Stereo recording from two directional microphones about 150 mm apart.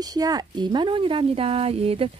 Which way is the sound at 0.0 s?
25° right (ahead or behind).